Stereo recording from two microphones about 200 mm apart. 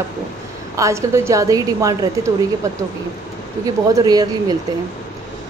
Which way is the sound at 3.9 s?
20° right (ahead or behind).